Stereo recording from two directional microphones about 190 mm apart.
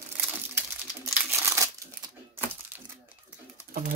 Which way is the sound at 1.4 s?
15° right (ahead or behind).